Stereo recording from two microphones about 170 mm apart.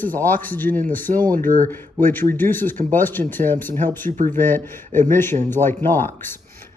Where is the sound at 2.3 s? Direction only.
10° left (ahead or behind).